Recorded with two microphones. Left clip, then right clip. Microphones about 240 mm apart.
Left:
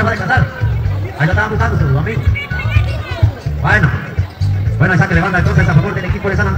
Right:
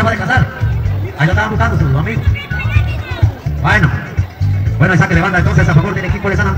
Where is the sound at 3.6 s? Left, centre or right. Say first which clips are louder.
Even; right.